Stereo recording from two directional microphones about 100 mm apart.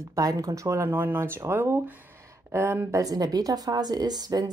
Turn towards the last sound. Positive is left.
turn(degrees=-40)  # may be behind; listen again after turning